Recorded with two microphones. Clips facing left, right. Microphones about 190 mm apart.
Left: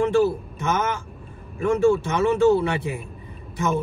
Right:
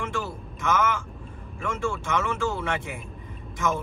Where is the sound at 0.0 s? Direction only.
35° left (ahead or behind).